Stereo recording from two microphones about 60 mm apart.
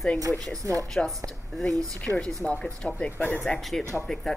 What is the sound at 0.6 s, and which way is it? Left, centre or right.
Speech, right.